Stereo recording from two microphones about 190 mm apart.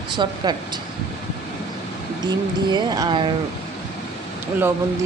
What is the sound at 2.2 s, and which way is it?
Speech, 20° right (ahead or behind).